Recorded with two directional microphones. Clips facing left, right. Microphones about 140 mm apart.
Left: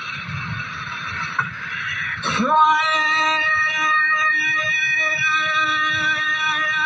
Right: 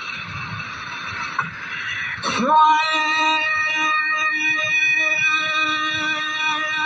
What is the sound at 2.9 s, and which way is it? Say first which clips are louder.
Music: right 1 dB; 20° right (ahead or behind).